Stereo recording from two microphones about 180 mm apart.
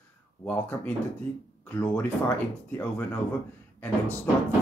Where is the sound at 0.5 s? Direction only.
10° left (ahead or behind).